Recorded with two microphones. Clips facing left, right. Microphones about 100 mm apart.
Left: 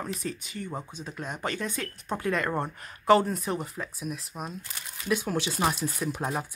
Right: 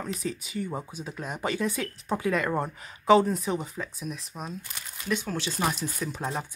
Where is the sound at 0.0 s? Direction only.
Centre (ahead or behind).